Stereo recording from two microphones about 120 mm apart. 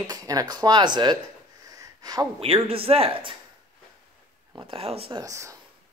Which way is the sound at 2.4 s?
50° right (ahead or behind).